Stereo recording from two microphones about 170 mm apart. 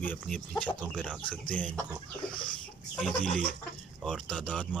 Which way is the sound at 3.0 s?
Centre (ahead or behind).